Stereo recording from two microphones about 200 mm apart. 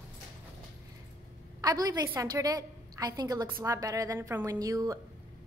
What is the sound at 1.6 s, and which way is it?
A woman's voice, 20° right (ahead or behind).